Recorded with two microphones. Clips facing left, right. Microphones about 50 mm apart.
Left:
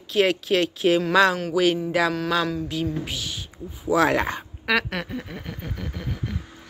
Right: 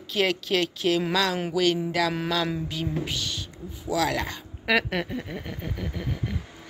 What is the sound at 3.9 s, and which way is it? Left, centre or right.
Speech, left.